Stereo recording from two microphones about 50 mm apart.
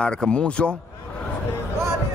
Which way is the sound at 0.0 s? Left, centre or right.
Centre.